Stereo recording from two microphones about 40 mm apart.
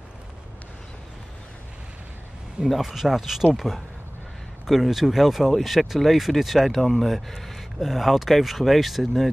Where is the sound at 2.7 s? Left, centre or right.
Centre.